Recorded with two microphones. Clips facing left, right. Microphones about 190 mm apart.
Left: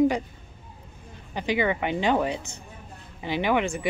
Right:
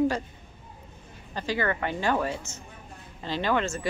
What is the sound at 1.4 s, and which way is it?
Speech, 15° left (ahead or behind).